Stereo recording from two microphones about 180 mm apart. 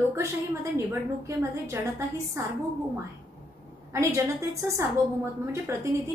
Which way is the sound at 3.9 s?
15° right (ahead or behind).